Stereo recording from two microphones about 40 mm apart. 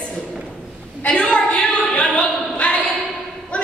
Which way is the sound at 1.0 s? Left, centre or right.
Left.